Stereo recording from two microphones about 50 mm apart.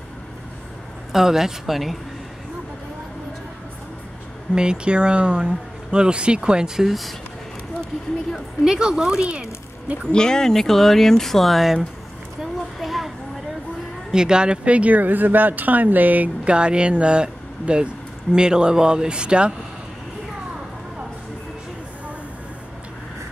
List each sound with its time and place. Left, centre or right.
1.1 s speech: centre
4.6 s speech: centre
6.9 s speech: centre
8.6 s speech: centre
10.0 s speech: centre
12.4 s a sound: centre
14.1 s speech: centre; by 16.3 s right
16.4 s speech: centre